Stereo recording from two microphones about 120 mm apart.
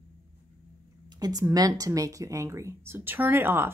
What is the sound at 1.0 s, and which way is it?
Speech, 35° right (ahead or behind).